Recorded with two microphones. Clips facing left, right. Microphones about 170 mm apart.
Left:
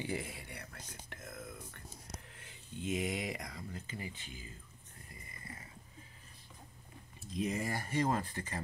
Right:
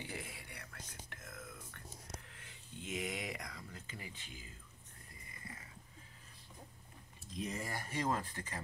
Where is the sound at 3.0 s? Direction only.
35° left (ahead or behind).